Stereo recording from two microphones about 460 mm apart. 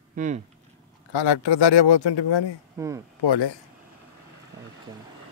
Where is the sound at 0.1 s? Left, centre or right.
Centre.